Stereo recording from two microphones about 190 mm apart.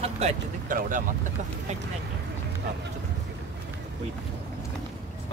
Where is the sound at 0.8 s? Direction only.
45° right (ahead or behind).